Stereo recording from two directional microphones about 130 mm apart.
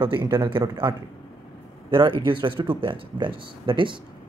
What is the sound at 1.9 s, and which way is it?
Speech, 40° right (ahead or behind).